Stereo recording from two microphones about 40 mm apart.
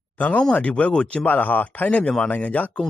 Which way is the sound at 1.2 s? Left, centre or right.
Left.